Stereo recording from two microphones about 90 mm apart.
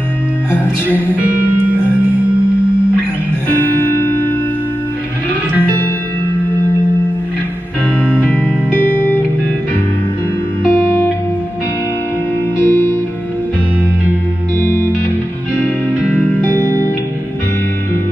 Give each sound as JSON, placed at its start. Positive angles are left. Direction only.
{"t": 0.5, "sound": "music", "side_deg": -20}
{"t": 8.0, "sound": "music", "side_deg": 20}
{"t": 10.7, "sound": "music", "side_deg": 30}
{"t": 12.5, "sound": "music", "side_deg": 25}
{"t": 14.6, "sound": "music", "side_deg": 25}
{"t": 16.0, "sound": "music", "side_deg": -15}
{"t": 16.3, "sound": "music", "side_deg": 25}